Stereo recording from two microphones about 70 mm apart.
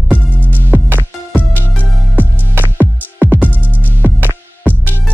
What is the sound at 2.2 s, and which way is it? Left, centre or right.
Music, right.